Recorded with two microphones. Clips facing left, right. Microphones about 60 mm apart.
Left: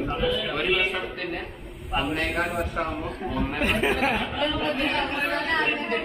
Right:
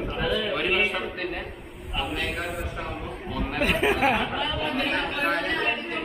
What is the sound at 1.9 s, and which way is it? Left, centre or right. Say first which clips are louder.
A man's voice: left 3 dB; left.